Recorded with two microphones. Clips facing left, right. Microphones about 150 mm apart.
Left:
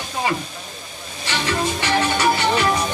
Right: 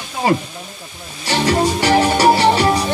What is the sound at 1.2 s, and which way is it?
Music, 35° right (ahead or behind).